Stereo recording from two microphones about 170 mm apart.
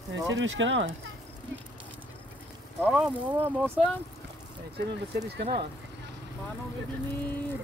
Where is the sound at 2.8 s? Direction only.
5° right (ahead or behind).